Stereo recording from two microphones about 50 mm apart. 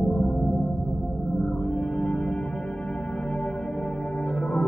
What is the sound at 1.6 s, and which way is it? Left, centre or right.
Ambient music, left.